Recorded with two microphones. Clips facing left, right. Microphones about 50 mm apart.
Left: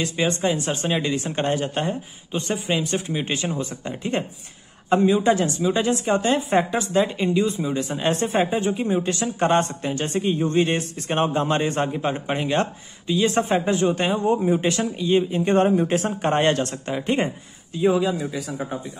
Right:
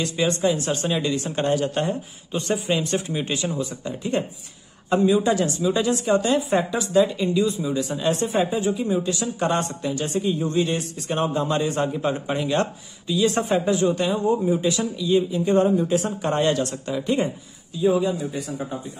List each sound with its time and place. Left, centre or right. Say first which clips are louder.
0.0 s speech: right 1 dB; left
0.8 s speech: left 2 dB; centre
3.3 s speech: even; left
15.4 s speech: left 1 dB; left
17.7 s a man's voice: even; left